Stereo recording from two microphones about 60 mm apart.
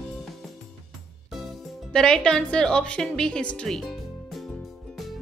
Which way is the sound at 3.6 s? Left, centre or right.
Centre.